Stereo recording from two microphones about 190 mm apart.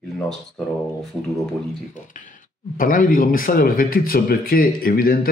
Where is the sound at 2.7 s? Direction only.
45° left (ahead or behind).